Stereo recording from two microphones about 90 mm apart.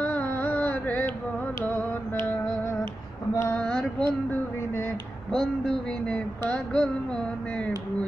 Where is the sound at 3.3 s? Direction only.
25° left (ahead or behind).